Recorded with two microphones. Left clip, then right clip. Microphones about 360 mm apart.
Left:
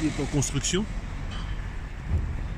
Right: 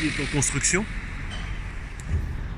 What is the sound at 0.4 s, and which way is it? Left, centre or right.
Speech, centre.